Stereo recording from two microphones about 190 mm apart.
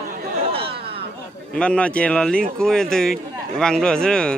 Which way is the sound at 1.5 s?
5° left (ahead or behind).